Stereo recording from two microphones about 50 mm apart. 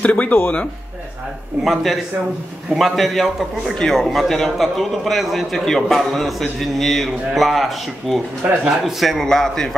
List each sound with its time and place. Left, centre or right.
0.0 s speech: left
1.6 s a man's voice: centre
3.7 s a man's voice: centre
8.4 s speech: right
8.8 s a man's voice: centre